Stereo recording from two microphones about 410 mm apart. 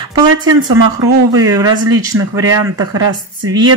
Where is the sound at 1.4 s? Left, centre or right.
Centre.